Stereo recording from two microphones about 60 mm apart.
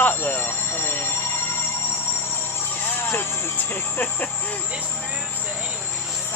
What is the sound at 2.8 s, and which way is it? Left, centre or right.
Speech, left.